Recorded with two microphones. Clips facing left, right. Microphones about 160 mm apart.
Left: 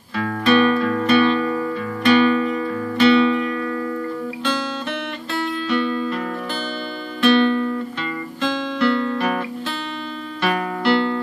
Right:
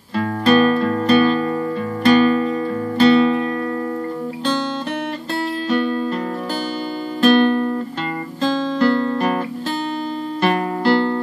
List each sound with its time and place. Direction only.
0.2 s music: 40° right (ahead or behind)
2.0 s guitar: 40° right (ahead or behind)
5.7 s music: 45° right (ahead or behind)
7.2 s music: 45° right (ahead or behind)
8.4 s guitar: 40° right (ahead or behind)
10.4 s music: 40° right (ahead or behind)